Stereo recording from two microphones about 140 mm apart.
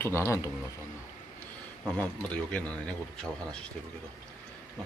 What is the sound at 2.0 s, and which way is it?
A man's voice, 10° left (ahead or behind).